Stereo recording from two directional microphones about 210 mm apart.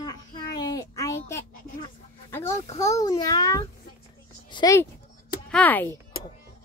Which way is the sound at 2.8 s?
15° left (ahead or behind).